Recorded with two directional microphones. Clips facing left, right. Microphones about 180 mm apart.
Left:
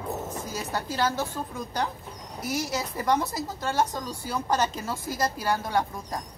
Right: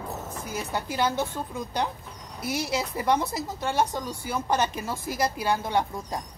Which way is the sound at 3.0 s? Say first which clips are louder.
Even; 15° right (ahead or behind).